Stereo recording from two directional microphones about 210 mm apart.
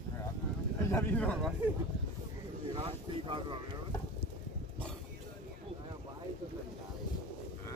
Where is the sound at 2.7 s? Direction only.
25° right (ahead or behind).